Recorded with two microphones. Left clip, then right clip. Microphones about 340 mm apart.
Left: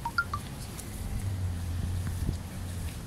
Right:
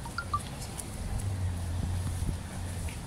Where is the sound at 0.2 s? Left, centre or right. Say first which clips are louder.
Left 8 dB; left.